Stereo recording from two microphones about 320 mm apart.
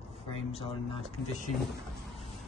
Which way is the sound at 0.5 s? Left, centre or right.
Centre.